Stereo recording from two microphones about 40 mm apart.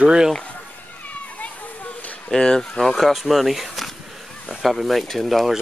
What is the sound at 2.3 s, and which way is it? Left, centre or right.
Speech, left.